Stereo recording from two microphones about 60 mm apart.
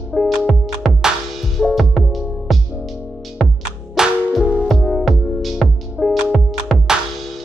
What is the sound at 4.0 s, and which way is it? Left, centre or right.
Music, centre.